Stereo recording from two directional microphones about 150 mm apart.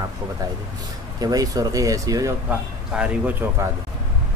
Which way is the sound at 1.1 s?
25° right (ahead or behind).